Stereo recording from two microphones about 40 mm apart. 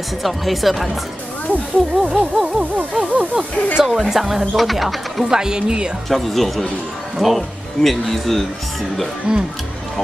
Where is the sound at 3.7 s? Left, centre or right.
Centre.